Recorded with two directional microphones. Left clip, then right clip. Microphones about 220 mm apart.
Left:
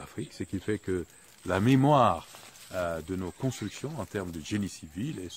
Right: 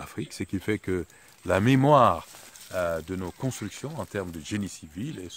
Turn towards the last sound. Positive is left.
turn(degrees=-15)  # may be behind; listen again after turning